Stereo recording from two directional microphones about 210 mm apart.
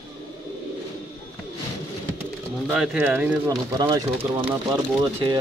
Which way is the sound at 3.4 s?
20° right (ahead or behind).